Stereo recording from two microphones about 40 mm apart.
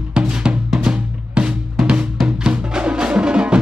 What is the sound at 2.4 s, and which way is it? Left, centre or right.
Music, right.